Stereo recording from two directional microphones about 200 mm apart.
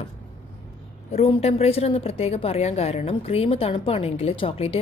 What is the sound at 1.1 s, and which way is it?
A woman's voice, 30° left (ahead or behind).